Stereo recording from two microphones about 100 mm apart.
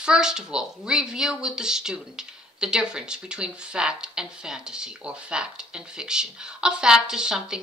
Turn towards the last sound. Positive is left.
turn(degrees=-5)  # may be behind; listen again after turning